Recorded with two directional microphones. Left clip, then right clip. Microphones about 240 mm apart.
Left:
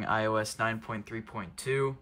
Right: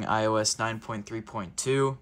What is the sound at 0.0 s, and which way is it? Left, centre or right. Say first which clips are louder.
Speech: right 3 dB; centre.